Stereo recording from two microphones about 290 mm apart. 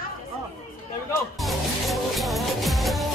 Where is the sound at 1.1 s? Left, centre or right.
Centre.